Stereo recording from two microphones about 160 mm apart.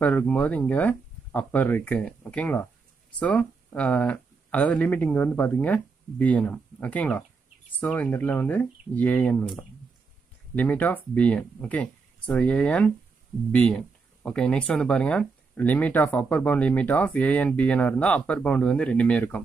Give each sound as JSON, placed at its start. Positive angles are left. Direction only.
{"t": 0.0, "sound": "speech", "side_deg": 10}